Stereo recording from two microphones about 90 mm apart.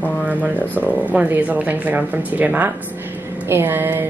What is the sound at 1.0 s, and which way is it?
A woman's voice, 15° right (ahead or behind).